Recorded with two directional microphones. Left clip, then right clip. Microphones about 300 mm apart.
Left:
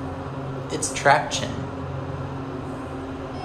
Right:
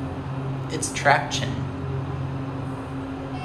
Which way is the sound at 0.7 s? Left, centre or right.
Centre.